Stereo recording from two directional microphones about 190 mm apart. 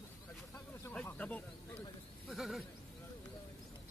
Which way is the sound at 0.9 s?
10° left (ahead or behind).